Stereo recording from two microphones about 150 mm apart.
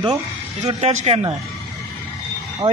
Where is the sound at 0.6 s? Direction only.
45° right (ahead or behind).